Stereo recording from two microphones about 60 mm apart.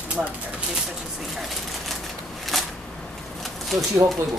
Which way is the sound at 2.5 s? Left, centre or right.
Centre.